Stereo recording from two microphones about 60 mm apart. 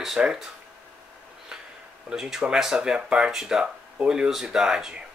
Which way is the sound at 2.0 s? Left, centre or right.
Centre.